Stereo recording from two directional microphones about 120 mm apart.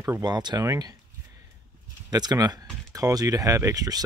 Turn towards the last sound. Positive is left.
turn(degrees=-30)  # may be behind; listen again after turning